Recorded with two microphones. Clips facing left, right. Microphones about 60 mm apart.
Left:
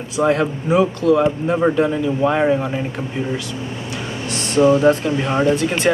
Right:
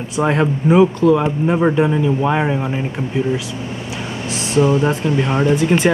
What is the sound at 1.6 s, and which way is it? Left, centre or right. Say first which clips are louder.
Speech: right 1 dB; centre.